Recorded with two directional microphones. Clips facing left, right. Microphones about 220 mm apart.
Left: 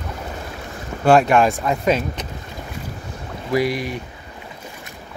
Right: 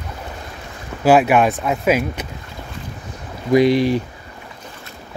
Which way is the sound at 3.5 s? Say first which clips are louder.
Right 7 dB; 25° right (ahead or behind).